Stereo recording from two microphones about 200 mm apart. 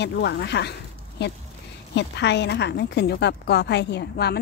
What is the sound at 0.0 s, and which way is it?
Speech, 60° left (ahead or behind).